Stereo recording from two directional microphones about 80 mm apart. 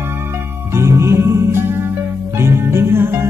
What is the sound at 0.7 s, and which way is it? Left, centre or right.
Music, right.